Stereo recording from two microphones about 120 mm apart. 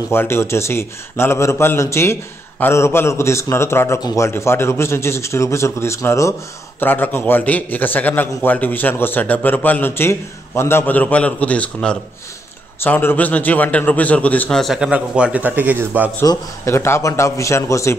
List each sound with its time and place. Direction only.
0.1 s a man's voice: 20° left (ahead or behind)
14.6 s a man's voice: 5° right (ahead or behind)
16.2 s a man's voice: 20° left (ahead or behind)